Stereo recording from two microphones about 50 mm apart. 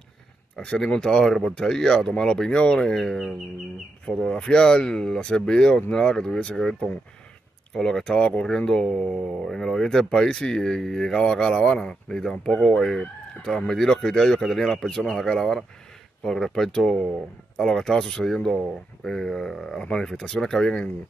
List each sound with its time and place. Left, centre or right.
0.6 s speech: centre
3.0 s speech: centre